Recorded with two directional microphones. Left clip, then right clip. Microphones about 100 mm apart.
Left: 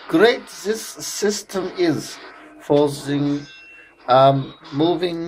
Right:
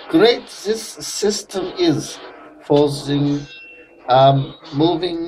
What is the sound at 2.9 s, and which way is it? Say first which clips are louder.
Speech: right 2 dB; 35° left (ahead or behind).